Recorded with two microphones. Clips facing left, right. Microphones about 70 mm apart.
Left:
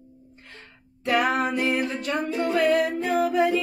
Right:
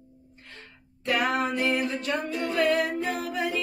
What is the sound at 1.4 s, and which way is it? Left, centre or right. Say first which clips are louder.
Speech: left 2 dB; centre.